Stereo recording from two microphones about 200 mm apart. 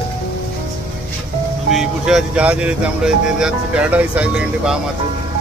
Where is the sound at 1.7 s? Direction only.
Centre (ahead or behind).